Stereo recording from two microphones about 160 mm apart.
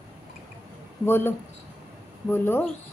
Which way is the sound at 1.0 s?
15° left (ahead or behind).